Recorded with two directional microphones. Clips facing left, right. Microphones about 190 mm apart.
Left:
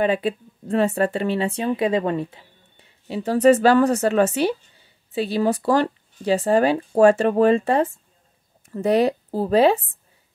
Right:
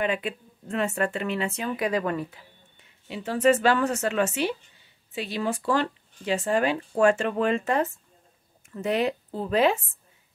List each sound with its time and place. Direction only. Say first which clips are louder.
0.0 s speech: left 7 dB; 35° left (ahead or behind)